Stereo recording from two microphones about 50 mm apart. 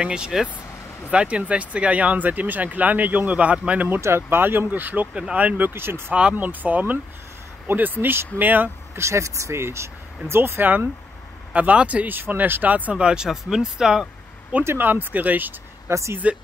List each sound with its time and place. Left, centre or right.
0.0 s speech: centre
4.0 s speech: right
5.3 s speech: right
5.6 s speech: right
6.3 s speech: right
8.9 s speech: right
11.5 s speech: right
12.2 s speech: right
12.9 s speech: centre
14.8 s speech: right
15.9 s speech: right